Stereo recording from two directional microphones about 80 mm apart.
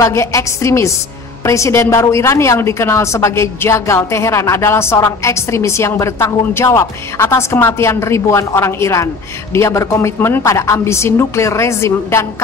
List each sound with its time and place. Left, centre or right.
0.0 s a woman's voice: left